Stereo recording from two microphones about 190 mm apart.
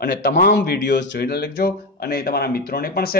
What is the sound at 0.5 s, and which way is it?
Speech, 60° left (ahead or behind).